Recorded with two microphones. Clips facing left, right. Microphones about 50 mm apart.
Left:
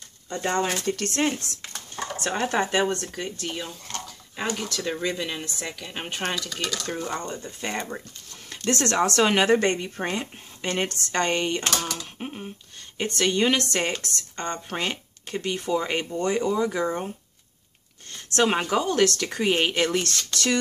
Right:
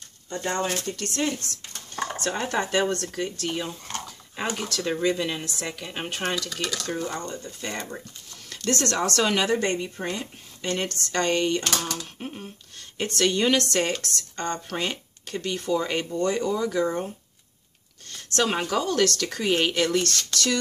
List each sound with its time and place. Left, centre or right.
0.3 s speech: left
0.9 s speech: left
2.4 s speech: centre
3.5 s speech: centre
7.2 s speech: centre
9.5 s speech: left
10.6 s speech: left
12.0 s a sound: centre
12.9 s speech: centre
18.1 s a sound: left
18.7 s speech: centre